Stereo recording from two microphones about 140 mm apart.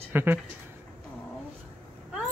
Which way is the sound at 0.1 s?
15° right (ahead or behind).